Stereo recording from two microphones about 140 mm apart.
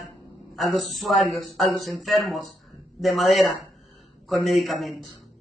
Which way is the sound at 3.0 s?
Centre (ahead or behind).